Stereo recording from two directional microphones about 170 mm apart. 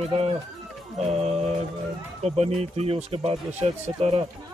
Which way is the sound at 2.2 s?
40° right (ahead or behind).